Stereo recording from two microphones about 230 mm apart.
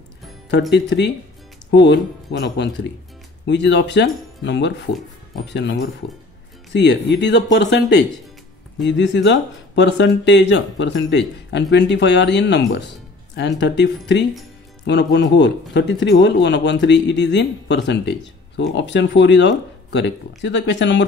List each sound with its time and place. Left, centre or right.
0.7 s a man's voice: left